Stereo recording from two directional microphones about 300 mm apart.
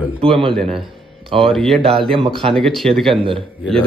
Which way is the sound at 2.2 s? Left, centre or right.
Centre.